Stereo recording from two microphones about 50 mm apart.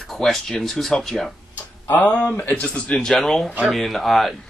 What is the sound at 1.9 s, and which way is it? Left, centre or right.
Speech, left.